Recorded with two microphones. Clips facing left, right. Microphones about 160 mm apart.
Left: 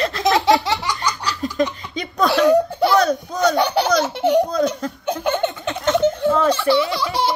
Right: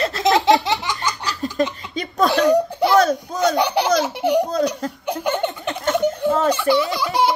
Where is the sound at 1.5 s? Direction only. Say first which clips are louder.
Even; 35° right (ahead or behind).